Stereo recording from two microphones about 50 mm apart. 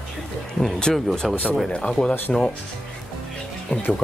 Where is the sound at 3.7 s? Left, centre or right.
Left.